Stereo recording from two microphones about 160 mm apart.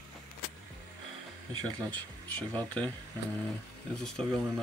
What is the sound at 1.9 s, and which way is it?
Speech, 10° left (ahead or behind).